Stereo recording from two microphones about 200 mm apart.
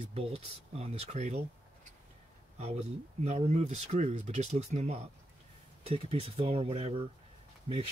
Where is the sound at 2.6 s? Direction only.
35° right (ahead or behind).